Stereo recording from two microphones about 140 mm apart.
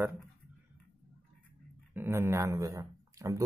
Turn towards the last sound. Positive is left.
turn(degrees=-25)  # may be behind; listen again after turning